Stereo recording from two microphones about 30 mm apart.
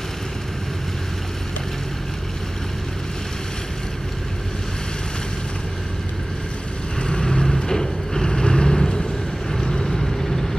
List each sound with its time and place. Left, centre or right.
7.0 s vehicle: left; by 10.6 s centre